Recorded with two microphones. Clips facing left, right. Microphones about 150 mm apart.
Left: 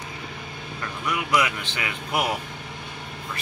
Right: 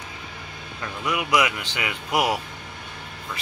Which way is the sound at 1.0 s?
10° right (ahead or behind).